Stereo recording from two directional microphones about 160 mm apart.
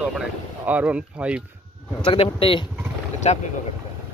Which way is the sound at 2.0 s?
35° left (ahead or behind).